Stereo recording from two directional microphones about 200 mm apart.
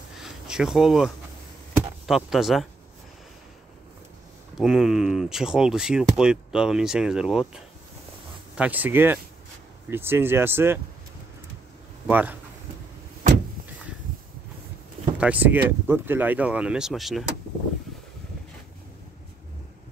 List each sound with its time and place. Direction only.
0.2 s a sound: 5° right (ahead or behind)
2.0 s speech: centre (ahead or behind)
4.6 s speech: 5° right (ahead or behind)
12.1 s speech: 10° right (ahead or behind)
15.1 s speech: 5° right (ahead or behind)